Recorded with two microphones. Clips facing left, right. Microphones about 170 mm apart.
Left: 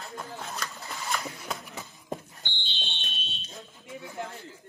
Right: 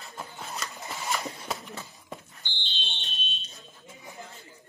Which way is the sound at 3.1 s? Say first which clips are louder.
Left 1 dB; 70° left (ahead or behind).